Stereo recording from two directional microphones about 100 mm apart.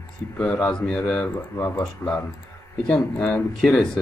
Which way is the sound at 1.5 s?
20° left (ahead or behind).